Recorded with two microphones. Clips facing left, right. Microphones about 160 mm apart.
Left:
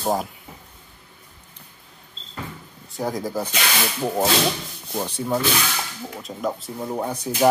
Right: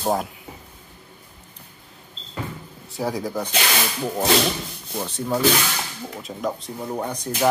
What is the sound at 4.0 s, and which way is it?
Speech, 20° left (ahead or behind).